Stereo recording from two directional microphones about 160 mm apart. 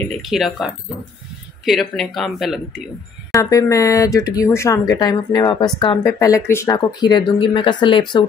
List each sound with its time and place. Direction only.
0.2 s speech: centre (ahead or behind)
1.7 s speech: centre (ahead or behind)
3.3 s speech: 20° left (ahead or behind)